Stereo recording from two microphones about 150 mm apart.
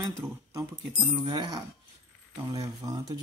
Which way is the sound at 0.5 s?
30° right (ahead or behind).